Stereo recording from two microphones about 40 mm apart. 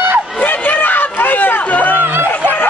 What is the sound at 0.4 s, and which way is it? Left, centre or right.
Chatter, left.